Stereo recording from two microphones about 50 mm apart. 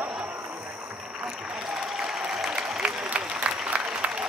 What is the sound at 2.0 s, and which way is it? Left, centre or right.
Applause, centre.